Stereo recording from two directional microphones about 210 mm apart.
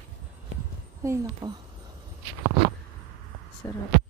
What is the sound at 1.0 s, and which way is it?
Speech, 15° right (ahead or behind).